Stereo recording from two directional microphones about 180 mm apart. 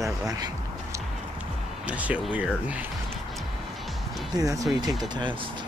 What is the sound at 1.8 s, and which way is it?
Speech, 10° right (ahead or behind).